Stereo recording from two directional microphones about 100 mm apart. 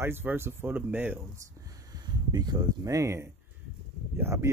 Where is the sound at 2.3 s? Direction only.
45° right (ahead or behind); by 4.4 s 25° right (ahead or behind).